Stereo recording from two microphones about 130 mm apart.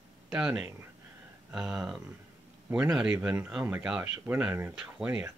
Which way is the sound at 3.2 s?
15° right (ahead or behind).